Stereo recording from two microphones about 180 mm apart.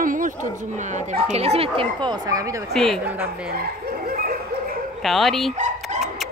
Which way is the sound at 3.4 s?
60° right (ahead or behind).